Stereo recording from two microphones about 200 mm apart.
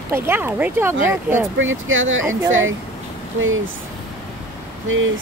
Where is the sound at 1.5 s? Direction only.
80° right.